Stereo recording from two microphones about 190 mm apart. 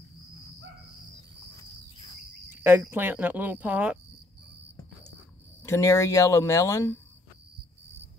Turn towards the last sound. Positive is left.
turn(degrees=15)  # may be behind; listen again after turning